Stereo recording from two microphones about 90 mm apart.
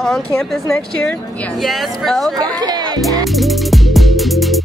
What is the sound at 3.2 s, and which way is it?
Music, centre (ahead or behind).